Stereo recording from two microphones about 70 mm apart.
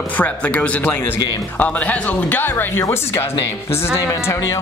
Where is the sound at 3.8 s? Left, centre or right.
Left.